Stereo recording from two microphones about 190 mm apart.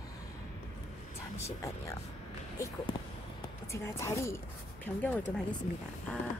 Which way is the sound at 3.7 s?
15° left (ahead or behind).